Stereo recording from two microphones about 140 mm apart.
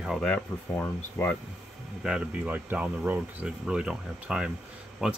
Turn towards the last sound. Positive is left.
turn(degrees=-5)  # may be behind; listen again after turning